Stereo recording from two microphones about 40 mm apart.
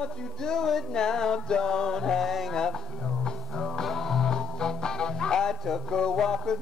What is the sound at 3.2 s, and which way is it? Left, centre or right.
Music, centre.